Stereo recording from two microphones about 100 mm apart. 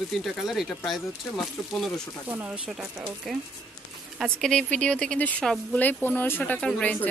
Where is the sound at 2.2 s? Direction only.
15° right (ahead or behind); by 5.8 s 5° left (ahead or behind).